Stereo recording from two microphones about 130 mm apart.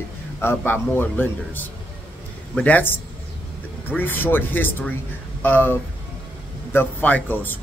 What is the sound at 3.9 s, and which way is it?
A man's voice, 15° left (ahead or behind).